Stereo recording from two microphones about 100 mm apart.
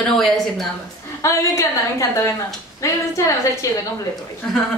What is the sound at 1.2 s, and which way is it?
Speech, 30° left (ahead or behind).